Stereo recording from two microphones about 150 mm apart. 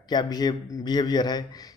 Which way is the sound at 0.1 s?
25° left (ahead or behind).